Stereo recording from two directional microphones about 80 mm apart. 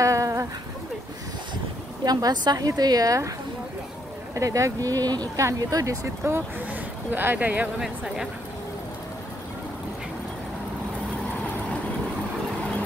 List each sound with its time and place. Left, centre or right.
0.0 s a sound: right
2.0 s a woman's voice: right
4.4 s a woman's voice: right
6.6 s speech: right
7.8 s speech: centre